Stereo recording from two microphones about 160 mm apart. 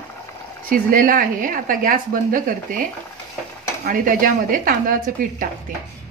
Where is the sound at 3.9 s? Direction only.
60° right (ahead or behind).